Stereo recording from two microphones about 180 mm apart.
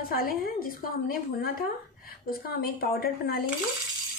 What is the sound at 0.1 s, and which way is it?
A woman's voice, 50° left (ahead or behind).